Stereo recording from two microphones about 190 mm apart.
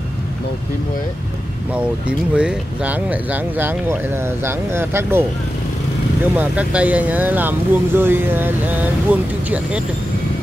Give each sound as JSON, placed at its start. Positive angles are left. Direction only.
{"t": 1.7, "sound": "speech", "side_deg": -5}
{"t": 6.3, "sound": "speech", "side_deg": -5}